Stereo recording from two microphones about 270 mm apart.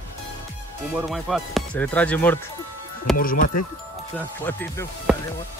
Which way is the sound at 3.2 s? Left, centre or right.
Left.